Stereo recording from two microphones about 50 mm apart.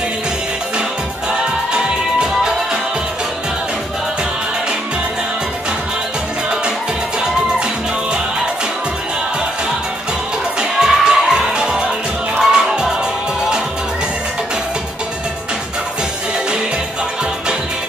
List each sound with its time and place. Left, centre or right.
1.7 s music: centre
10.6 s music: centre